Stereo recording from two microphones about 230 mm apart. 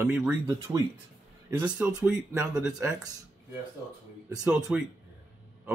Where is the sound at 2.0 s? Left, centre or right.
Centre.